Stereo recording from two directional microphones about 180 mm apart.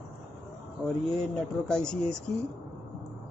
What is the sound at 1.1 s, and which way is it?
Speech, 5° left (ahead or behind).